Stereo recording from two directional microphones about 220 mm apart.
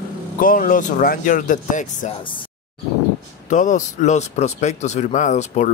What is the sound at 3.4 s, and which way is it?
Speech, 35° left (ahead or behind).